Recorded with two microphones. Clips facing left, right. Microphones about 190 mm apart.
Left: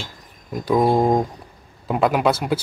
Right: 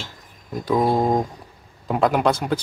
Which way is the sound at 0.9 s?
15° left (ahead or behind).